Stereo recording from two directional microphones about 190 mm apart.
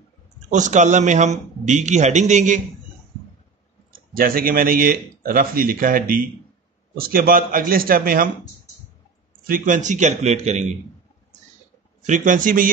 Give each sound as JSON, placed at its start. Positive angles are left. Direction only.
{"t": 0.5, "sound": "a man's voice", "side_deg": -40}
{"t": 4.1, "sound": "speech", "side_deg": -50}
{"t": 9.5, "sound": "a man's voice", "side_deg": -40}
{"t": 12.1, "sound": "speech", "side_deg": -45}